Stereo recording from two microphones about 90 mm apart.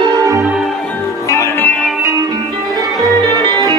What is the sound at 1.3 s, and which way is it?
Music, 35° left (ahead or behind).